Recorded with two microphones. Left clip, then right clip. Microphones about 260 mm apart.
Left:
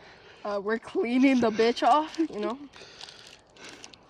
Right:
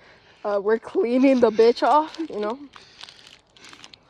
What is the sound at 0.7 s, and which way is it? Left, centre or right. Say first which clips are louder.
Speech: right 7 dB; centre.